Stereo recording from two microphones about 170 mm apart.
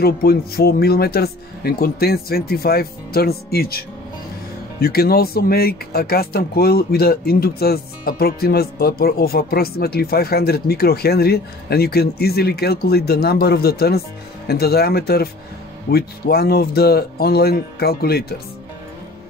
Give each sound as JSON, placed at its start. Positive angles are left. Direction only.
{"t": 0.0, "sound": "speech", "side_deg": 65}